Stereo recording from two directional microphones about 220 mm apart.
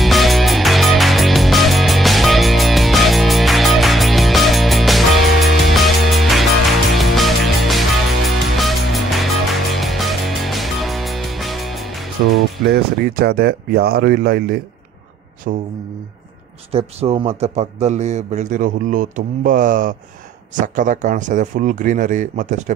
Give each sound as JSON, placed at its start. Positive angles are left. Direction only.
{"t": 0.0, "sound": "music", "side_deg": 0}
{"t": 12.6, "sound": "speech", "side_deg": -45}
{"t": 16.7, "sound": "speech", "side_deg": -25}